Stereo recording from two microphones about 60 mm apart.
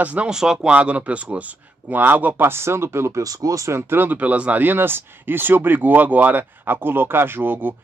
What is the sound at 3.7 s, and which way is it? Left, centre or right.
Speech, right.